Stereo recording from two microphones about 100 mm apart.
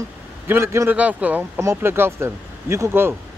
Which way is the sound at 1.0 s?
15° right (ahead or behind).